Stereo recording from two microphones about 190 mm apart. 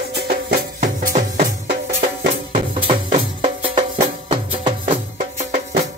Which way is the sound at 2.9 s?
30° right (ahead or behind).